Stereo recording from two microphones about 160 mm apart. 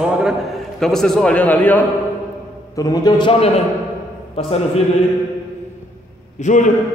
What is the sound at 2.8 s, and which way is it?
Speech, 25° left (ahead or behind).